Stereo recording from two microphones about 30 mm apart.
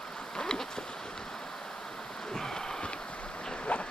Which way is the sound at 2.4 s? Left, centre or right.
Centre.